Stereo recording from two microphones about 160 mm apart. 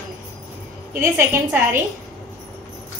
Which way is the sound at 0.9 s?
15° right (ahead or behind).